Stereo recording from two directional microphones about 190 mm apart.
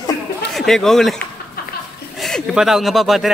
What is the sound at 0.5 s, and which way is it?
A man's voice, centre (ahead or behind).